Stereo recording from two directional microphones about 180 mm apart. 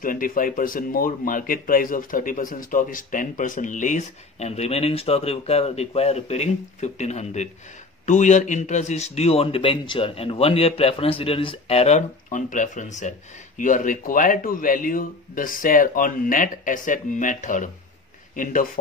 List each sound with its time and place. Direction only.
0.0 s a man's voice: 50° left (ahead or behind)